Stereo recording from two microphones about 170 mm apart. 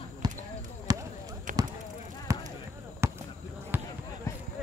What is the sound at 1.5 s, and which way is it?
Basketball bounce, 50° right (ahead or behind).